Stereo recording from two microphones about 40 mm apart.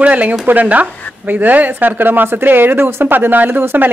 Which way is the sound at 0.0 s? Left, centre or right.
Right.